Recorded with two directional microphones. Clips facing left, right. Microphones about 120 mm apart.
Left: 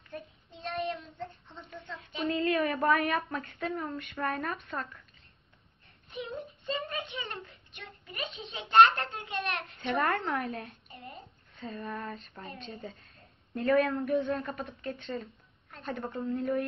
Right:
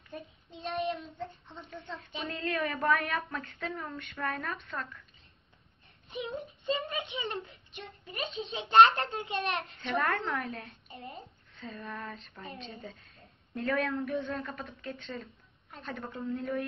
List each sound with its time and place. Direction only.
0.5 s child singing: 15° right (ahead or behind)
0.9 s a woman's voice: centre (ahead or behind)
6.6 s speech: 15° right (ahead or behind)
7.4 s speech: 30° right (ahead or behind)
9.8 s a woman's voice: 5° left (ahead or behind)